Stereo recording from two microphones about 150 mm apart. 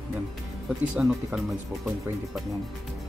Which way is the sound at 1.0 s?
Centre (ahead or behind).